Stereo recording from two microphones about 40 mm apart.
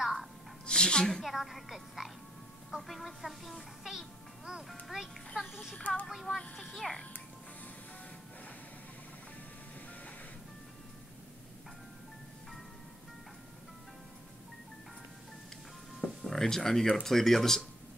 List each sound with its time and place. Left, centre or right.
0.0 s music: centre
0.7 s a woman's voice: left
1.2 s a child's voice: centre
6.5 s speech: centre
16.3 s speech: centre